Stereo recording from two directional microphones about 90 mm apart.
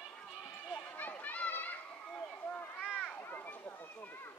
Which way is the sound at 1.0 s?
20° left (ahead or behind).